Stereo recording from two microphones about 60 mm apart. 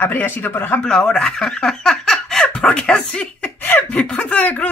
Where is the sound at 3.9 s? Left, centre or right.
Centre.